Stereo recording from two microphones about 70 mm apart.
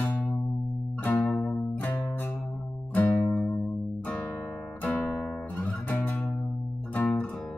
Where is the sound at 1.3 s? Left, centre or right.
Left.